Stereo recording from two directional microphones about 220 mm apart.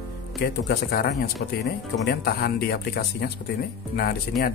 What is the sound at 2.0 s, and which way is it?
Speech, 45° left (ahead or behind).